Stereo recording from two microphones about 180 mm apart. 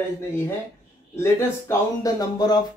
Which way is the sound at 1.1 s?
15° left (ahead or behind).